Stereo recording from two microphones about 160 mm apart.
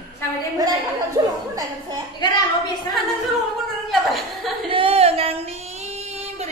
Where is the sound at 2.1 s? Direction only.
25° left (ahead or behind).